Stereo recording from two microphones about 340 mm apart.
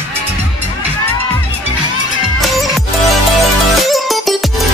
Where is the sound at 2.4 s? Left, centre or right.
Centre.